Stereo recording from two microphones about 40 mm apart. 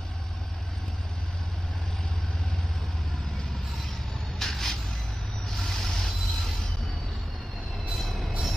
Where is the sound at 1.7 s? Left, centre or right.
Centre.